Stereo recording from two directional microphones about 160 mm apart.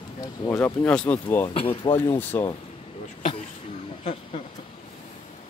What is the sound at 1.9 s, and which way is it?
Speech, 15° left (ahead or behind).